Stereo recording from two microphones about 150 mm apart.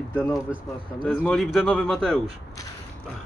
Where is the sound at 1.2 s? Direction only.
5° left (ahead or behind).